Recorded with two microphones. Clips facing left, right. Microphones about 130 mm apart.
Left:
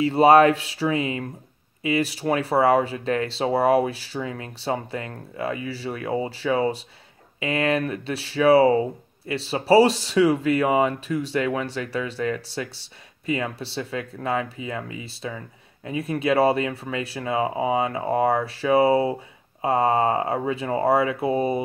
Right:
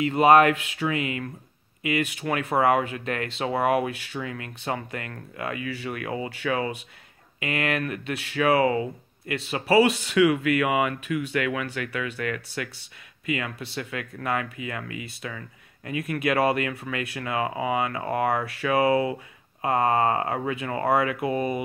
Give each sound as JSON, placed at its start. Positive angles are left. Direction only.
{"t": 0.0, "sound": "speech", "side_deg": 30}